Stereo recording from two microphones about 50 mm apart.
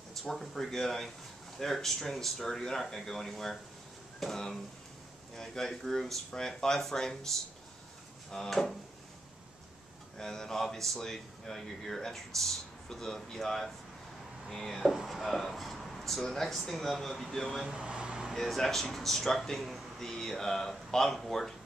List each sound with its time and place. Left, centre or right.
0.1 s speech: centre
8.3 s speech: centre
10.1 s speech: centre
17.6 s a sound: centre
18.3 s speech: centre